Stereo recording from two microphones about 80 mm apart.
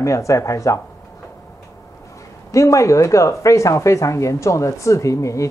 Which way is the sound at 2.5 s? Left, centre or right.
Left.